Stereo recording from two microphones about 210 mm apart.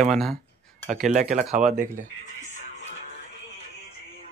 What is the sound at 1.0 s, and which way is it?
Speech, 35° right (ahead or behind).